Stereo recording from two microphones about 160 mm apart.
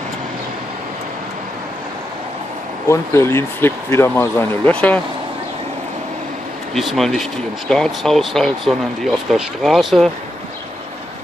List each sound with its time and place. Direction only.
2.9 s speech: 15° left (ahead or behind)
6.7 s speech: centre (ahead or behind)